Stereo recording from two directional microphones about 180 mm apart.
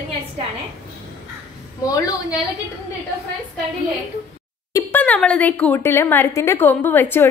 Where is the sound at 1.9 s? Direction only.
20° left (ahead or behind).